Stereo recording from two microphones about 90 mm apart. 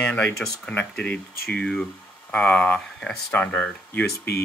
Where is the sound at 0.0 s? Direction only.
15° left (ahead or behind).